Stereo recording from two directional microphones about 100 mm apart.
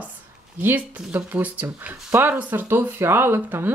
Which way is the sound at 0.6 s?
20° right (ahead or behind).